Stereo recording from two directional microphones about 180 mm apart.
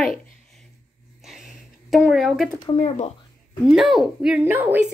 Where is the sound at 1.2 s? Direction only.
Centre (ahead or behind).